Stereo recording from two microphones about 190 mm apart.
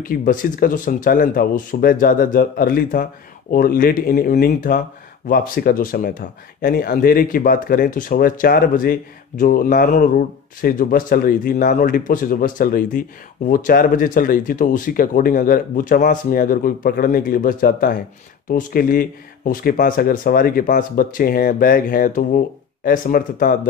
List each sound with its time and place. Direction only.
0.0 s speech: 45° left (ahead or behind)